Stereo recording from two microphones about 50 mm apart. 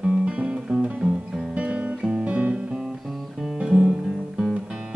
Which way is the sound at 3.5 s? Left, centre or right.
Right.